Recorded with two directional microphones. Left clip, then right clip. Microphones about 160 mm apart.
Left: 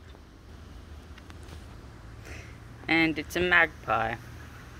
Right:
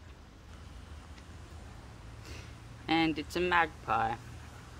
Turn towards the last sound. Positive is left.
turn(degrees=-5)  # may be behind; listen again after turning